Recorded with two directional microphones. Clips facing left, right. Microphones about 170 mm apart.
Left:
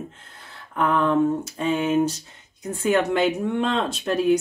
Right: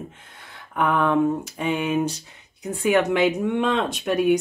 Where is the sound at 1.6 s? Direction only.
10° right (ahead or behind).